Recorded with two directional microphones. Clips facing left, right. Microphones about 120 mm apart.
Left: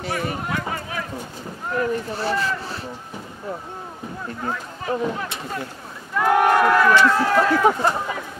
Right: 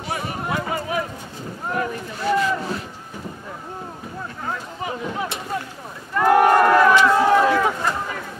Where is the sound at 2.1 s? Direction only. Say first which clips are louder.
Right 3 dB; 30° left (ahead or behind).